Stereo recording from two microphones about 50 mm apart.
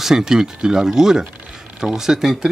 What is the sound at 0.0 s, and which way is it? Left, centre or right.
Speech, centre.